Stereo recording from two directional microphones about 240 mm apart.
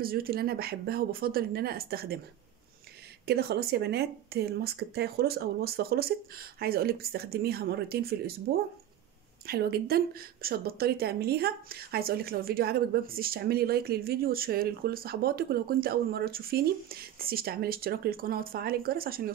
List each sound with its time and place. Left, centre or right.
0.0 s a woman's voice: right
3.3 s a woman's voice: right
9.5 s a woman's voice: right